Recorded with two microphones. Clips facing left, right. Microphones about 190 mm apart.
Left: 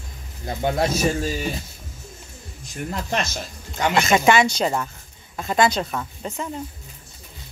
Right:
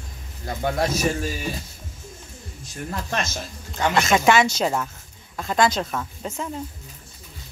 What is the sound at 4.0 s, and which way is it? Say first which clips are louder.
Speech: left 1 dB; centre (ahead or behind).